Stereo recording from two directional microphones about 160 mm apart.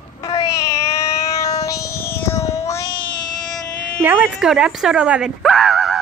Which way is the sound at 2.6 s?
20° left (ahead or behind).